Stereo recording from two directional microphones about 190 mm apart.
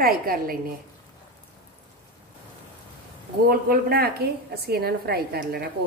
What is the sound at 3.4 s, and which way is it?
A woman's voice, 50° right (ahead or behind).